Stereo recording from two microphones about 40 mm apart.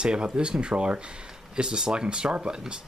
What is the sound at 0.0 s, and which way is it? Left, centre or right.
Speech, right.